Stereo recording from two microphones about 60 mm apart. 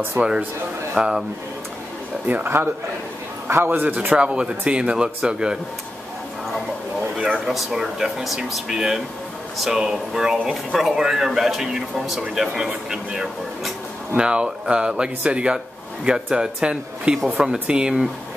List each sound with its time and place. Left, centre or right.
0.2 s a man's voice: right
0.9 s speech: centre
2.2 s a man's voice: right; by 5.6 s centre
7.2 s speech: centre